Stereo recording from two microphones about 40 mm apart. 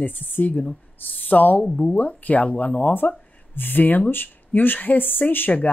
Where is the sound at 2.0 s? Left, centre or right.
Left.